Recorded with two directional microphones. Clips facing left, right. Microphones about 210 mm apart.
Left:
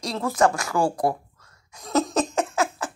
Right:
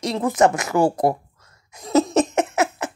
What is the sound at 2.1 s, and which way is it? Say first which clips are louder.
Laughter: right 5 dB; 20° right (ahead or behind).